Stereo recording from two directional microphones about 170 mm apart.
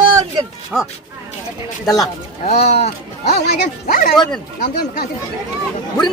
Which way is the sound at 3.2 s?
75° left (ahead or behind).